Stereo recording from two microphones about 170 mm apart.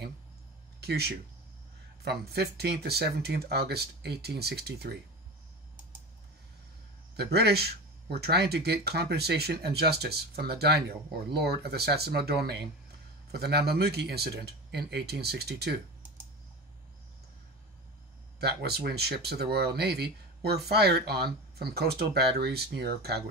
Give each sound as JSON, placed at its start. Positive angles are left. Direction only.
{"t": 0.7, "sound": "speech", "side_deg": -70}
{"t": 7.2, "sound": "speech", "side_deg": -70}
{"t": 18.4, "sound": "speech", "side_deg": -75}